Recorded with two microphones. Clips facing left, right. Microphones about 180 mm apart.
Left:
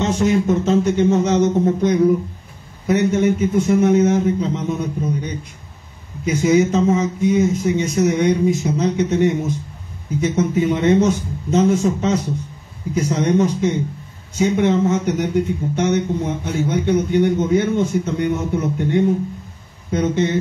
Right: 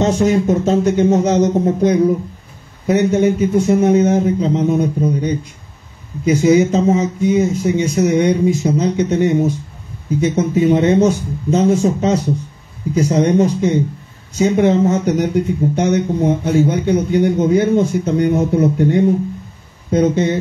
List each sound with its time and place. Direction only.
0.0 s a man's voice: 35° right (ahead or behind)